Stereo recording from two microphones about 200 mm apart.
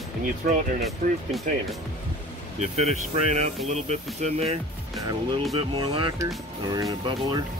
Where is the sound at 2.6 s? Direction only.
35° right (ahead or behind).